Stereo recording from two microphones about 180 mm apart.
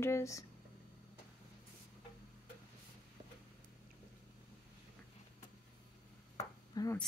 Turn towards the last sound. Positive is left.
turn(degrees=20)  # may be behind; listen again after turning